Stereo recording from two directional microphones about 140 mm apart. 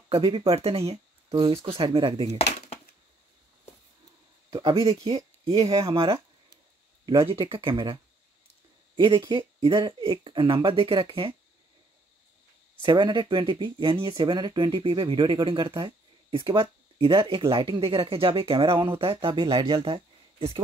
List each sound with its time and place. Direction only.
0.1 s speech: 40° right (ahead or behind)
2.3 s a sound: 50° left (ahead or behind)
4.5 s speech: 35° right (ahead or behind)
4.8 s speech: 45° right (ahead or behind)
12.8 s speech: 35° right (ahead or behind)